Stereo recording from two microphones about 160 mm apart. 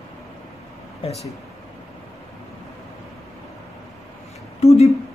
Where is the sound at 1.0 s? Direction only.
35° left (ahead or behind).